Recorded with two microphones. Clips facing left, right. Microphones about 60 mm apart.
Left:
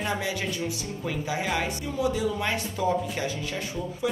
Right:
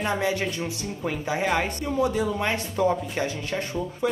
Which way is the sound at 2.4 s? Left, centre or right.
Right.